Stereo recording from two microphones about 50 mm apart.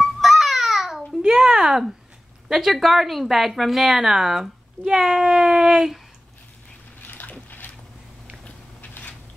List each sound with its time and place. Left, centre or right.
0.0 s babbling: centre
1.2 s a sound: centre
2.4 s a woman's voice: centre
7.0 s splash: left
7.4 s boat: left